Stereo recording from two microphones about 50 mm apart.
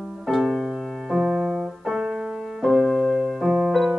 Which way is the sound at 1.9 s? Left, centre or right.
Centre.